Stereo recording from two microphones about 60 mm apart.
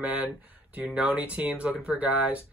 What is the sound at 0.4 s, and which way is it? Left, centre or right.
Speech, right.